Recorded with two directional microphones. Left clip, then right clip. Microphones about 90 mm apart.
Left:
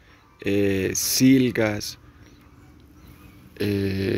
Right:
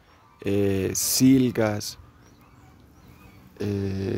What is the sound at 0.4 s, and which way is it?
Speech, 65° right (ahead or behind).